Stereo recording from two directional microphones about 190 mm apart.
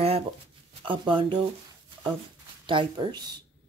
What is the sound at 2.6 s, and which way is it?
Speech, 25° right (ahead or behind).